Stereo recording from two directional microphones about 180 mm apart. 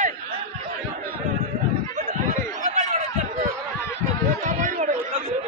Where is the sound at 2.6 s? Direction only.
40° right (ahead or behind).